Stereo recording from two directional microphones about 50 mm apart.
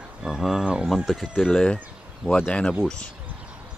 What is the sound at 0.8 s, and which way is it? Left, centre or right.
Speech, centre.